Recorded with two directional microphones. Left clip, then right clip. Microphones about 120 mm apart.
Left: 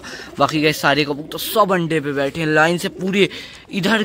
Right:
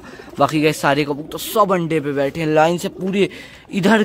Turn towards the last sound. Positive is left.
turn(degrees=-20)  # may be behind; listen again after turning